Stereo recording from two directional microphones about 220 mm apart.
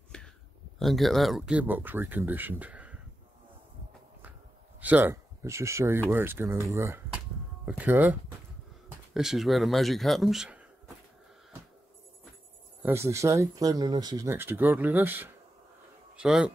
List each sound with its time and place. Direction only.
0.1 s a sound: 5° left (ahead or behind)
0.7 s speech: centre (ahead or behind)
4.7 s speech: 5° right (ahead or behind)
12.8 s a man's voice: 10° right (ahead or behind)